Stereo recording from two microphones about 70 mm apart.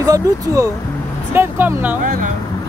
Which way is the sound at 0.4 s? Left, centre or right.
Right.